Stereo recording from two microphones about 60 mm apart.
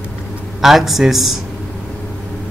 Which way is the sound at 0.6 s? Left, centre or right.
Centre.